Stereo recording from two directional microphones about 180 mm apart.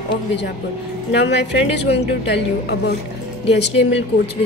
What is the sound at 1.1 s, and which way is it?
A woman's voice, 75° left (ahead or behind).